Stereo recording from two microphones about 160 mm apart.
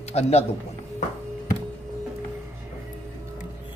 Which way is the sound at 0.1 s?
40° left (ahead or behind).